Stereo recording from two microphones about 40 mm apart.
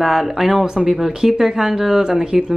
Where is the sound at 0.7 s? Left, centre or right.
Centre.